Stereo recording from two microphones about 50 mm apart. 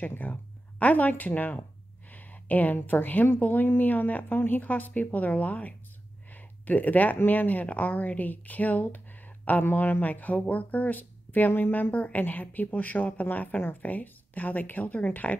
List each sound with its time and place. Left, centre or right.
0.2 s speech: left
9.6 s speech: left
11.9 s speech: left